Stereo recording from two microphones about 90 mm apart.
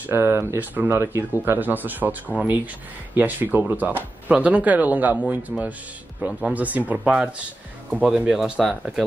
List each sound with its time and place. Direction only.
0.0 s speech: 25° right (ahead or behind); by 8.7 s centre (ahead or behind)